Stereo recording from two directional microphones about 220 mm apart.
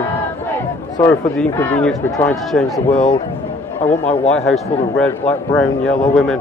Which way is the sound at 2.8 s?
30° left (ahead or behind).